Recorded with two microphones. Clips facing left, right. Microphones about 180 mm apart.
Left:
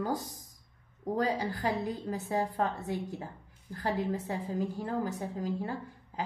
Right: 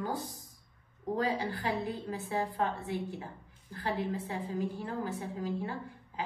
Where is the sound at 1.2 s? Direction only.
40° left (ahead or behind).